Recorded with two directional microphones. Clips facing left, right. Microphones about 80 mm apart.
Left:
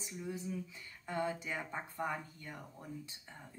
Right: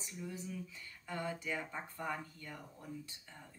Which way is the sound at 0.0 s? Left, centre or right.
Left.